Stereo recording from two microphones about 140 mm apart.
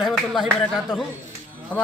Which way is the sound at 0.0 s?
Centre (ahead or behind).